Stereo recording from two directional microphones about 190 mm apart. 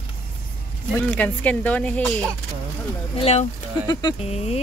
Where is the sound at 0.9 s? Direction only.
10° left (ahead or behind).